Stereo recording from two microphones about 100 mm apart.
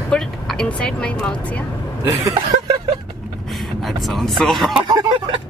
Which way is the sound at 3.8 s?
Centre (ahead or behind).